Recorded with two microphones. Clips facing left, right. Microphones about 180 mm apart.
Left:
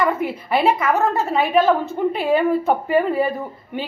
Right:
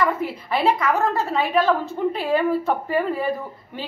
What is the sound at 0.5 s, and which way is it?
Speech, 5° left (ahead or behind).